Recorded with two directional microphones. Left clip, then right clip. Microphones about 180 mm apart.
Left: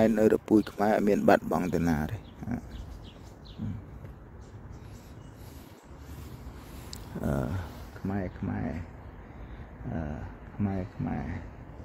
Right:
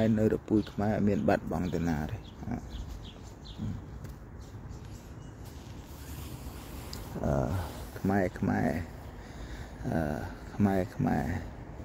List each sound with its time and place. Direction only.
0.0 s speech: 50° left (ahead or behind)
7.2 s speech: 50° left (ahead or behind)
8.1 s speech: 40° right (ahead or behind)
9.8 s speech: 30° right (ahead or behind)